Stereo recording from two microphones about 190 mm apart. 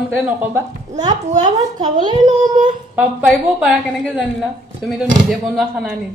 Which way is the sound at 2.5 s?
45° right (ahead or behind).